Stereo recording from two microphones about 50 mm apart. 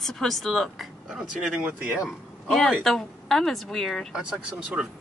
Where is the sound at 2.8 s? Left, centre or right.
Centre.